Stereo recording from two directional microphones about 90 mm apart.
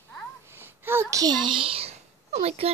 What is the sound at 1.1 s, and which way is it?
Speech, 50° right (ahead or behind).